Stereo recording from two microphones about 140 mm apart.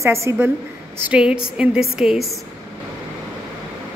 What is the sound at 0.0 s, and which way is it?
Speech, 20° right (ahead or behind).